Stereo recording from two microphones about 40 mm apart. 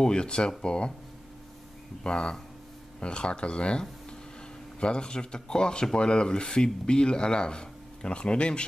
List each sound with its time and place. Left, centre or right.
0.0 s speech: left
2.0 s speech: left